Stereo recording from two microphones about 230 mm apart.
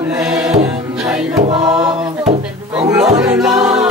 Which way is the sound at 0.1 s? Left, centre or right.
Centre.